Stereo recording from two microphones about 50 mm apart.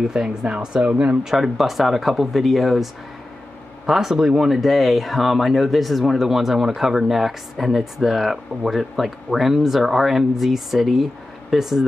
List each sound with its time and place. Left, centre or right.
0.0 s speech: centre
1.2 s speech: centre